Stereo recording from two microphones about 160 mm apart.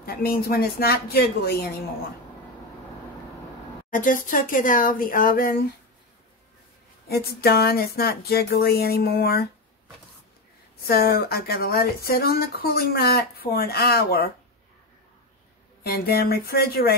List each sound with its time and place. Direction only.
0.0 s speech: 70° left (ahead or behind)
3.9 s speech: 55° left (ahead or behind)
7.1 s speech: 80° left
10.8 s speech: 75° left (ahead or behind)
15.8 s speech: 75° left (ahead or behind)